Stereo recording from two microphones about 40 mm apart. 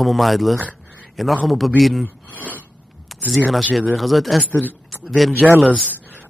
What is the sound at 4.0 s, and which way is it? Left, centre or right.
A man's voice, centre.